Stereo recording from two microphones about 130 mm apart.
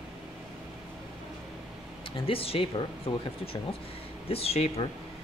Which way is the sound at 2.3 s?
45° left (ahead or behind).